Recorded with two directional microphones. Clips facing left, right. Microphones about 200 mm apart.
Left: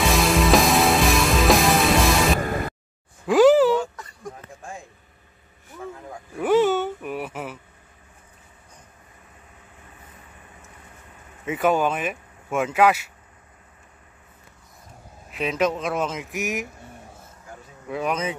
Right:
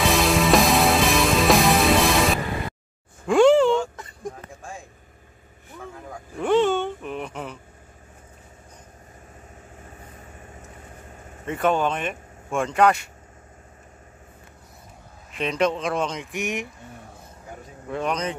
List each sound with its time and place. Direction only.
0.0 s music: centre (ahead or behind)
3.3 s a sound: 5° left (ahead or behind)
6.3 s a sound: 5° left (ahead or behind)
9.8 s vehicle: 40° right (ahead or behind)
11.4 s speech: 5° left (ahead or behind)
15.3 s speech: 5° left (ahead or behind)
17.8 s speech: 5° left (ahead or behind)